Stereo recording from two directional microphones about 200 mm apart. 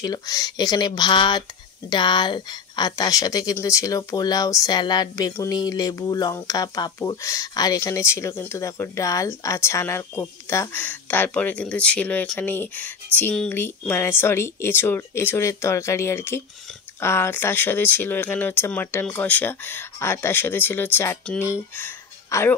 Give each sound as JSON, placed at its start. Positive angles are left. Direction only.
{"t": 0.0, "sound": "a woman's voice", "side_deg": 20}